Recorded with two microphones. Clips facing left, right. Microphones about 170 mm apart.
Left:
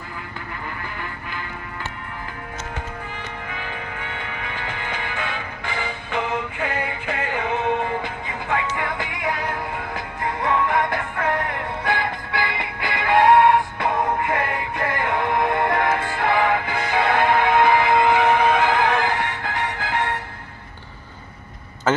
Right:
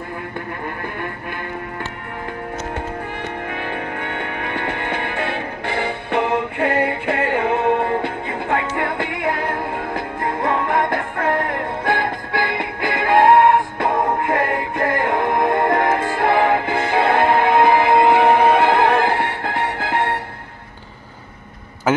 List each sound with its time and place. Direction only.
3.4 s music: 55° right (ahead or behind)